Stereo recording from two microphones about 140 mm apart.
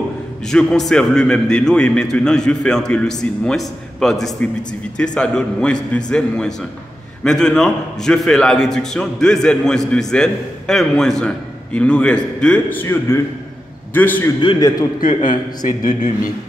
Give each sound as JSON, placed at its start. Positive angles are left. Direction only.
{"t": 0.5, "sound": "a man's voice", "side_deg": 5}
{"t": 15.0, "sound": "a man's voice", "side_deg": 70}